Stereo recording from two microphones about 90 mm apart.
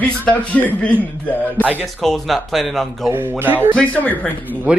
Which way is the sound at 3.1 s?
25° right (ahead or behind).